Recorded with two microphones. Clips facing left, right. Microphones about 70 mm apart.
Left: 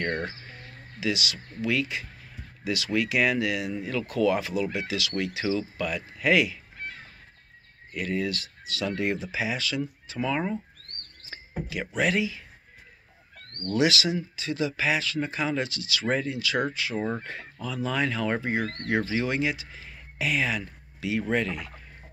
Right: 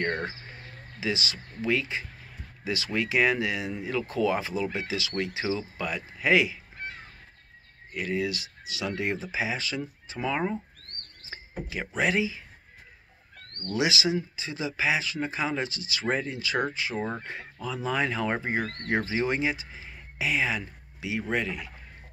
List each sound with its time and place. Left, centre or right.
0.0 s speech: right
7.9 s speech: centre
10.2 s speech: centre
11.2 s speech: right
13.7 s speech: centre